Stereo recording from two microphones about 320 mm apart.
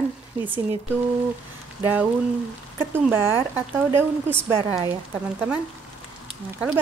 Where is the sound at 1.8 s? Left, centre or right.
Centre.